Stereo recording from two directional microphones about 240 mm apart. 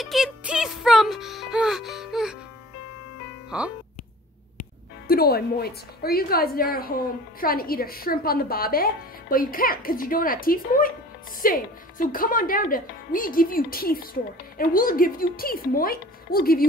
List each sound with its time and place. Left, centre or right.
0.0 s music: centre
3.4 s music: centre
5.0 s a woman's voice: left